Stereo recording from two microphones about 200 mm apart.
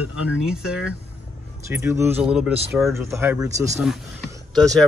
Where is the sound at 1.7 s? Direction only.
15° right (ahead or behind).